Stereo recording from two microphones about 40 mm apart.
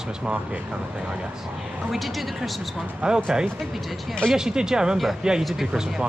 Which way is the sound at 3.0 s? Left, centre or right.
Right.